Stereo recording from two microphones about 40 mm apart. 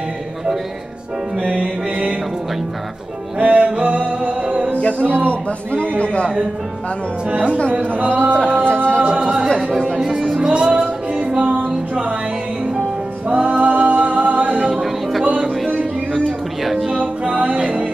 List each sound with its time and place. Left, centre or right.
1.5 s music: right
3.3 s music: right
4.7 s a man's voice: left
7.4 s music: left
7.7 s speech: right
8.6 s music: left
9.2 s music: centre
9.9 s speech: centre
10.4 s music: right
13.3 s singing: right
14.6 s music: centre
16.6 s music: centre
17.0 s music: right